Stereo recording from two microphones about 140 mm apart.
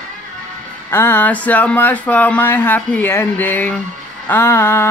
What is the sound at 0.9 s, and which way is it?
Speech, 15° left (ahead or behind).